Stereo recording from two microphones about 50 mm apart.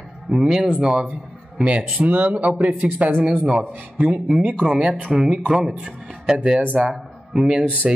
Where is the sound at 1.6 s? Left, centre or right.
Right.